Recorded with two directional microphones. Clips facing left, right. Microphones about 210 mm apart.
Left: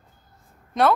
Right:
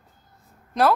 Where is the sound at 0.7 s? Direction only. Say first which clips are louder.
Even; centre (ahead or behind).